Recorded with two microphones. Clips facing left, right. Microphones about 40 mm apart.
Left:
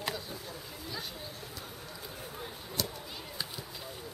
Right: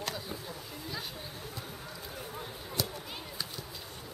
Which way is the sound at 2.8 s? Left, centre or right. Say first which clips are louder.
Right 1 dB; centre.